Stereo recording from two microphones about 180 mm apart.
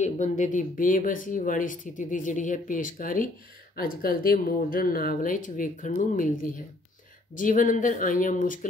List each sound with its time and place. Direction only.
0.0 s speech: 40° left (ahead or behind)